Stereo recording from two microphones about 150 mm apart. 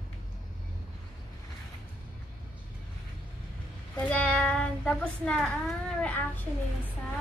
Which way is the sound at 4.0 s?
10° left (ahead or behind).